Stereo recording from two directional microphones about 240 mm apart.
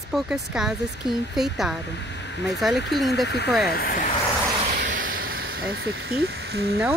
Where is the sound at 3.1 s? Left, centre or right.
Left.